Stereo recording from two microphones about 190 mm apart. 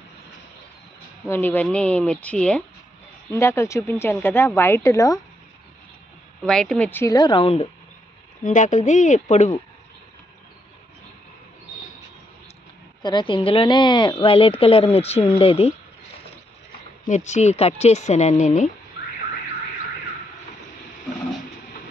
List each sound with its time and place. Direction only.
1.3 s speech: 10° left (ahead or behind)
6.4 s speech: 5° left (ahead or behind); by 7.6 s 30° left (ahead or behind)
8.5 s a woman's voice: 40° left (ahead or behind)
13.0 s a woman's voice: 25° left (ahead or behind)
17.1 s a woman's voice: 40° left (ahead or behind)